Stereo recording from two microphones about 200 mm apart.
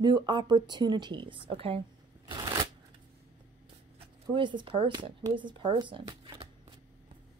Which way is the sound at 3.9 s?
25° right (ahead or behind).